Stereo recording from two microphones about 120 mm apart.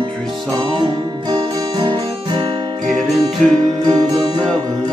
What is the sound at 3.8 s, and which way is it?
Music, 35° right (ahead or behind).